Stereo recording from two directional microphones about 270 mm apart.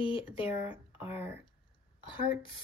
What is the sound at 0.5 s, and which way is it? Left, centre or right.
Speech, centre.